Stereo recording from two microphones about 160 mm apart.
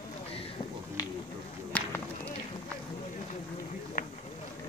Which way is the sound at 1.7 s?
10° left (ahead or behind).